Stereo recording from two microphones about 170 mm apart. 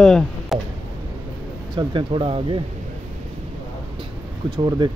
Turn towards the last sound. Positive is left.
turn(degrees=-25)  # may be behind; listen again after turning